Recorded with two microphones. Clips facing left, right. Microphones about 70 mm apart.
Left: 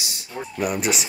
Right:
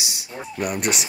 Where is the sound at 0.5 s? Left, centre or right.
Centre.